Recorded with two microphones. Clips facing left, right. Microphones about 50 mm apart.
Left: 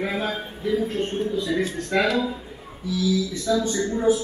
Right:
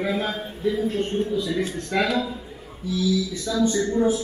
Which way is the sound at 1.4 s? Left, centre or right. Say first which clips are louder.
Left 1 dB; left.